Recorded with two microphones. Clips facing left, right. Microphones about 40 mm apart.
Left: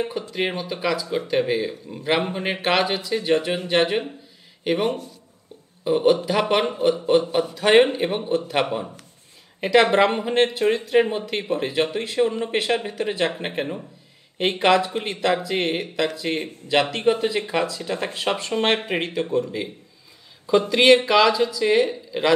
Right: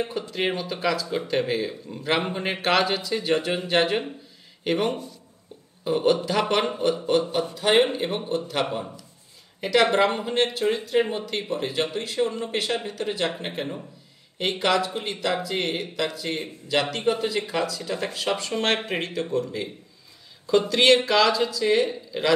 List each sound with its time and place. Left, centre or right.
0.3 s speech: centre
7.5 s speech: left
9.6 s a woman's voice: left
11.0 s speech: left
16.0 s speech: left; by 22.3 s centre